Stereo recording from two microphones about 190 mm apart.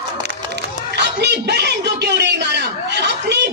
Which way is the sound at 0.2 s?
65° right (ahead or behind).